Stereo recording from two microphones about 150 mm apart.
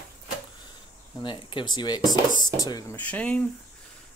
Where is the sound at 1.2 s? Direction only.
35° left (ahead or behind).